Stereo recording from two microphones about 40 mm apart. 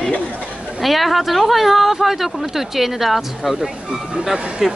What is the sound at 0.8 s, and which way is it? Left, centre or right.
A woman's voice, centre.